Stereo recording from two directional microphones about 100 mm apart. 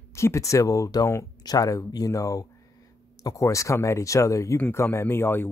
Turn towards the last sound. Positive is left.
turn(degrees=20)  # may be behind; listen again after turning